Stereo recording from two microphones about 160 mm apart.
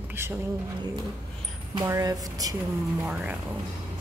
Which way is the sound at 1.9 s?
20° right (ahead or behind).